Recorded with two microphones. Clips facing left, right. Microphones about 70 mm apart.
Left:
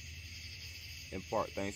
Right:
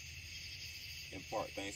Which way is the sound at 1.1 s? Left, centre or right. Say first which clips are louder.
Left 6 dB; left.